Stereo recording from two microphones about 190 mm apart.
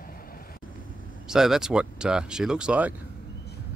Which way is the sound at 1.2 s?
Centre (ahead or behind).